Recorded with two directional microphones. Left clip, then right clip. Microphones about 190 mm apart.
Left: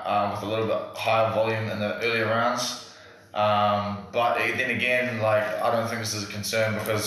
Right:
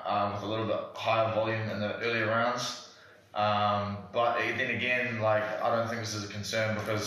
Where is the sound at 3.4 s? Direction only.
15° left (ahead or behind).